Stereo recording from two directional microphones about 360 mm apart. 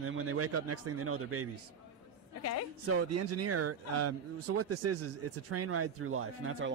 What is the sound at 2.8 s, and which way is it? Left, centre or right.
Speech, right.